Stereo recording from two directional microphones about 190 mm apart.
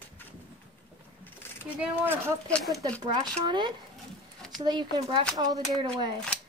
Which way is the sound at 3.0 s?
25° right (ahead or behind).